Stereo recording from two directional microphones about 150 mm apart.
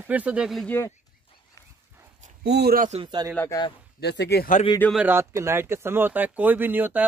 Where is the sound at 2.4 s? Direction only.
90° right.